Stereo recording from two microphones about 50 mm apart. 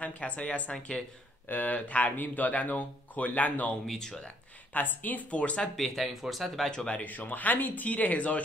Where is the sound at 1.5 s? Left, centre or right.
Left.